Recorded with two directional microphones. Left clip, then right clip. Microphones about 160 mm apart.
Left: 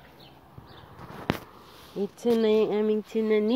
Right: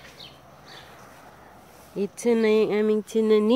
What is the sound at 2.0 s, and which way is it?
Speech, 5° right (ahead or behind).